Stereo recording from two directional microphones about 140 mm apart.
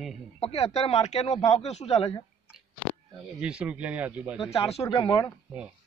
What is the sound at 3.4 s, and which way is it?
Speech, 10° right (ahead or behind).